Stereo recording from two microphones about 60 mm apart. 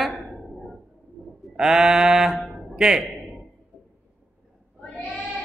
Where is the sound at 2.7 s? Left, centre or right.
Centre.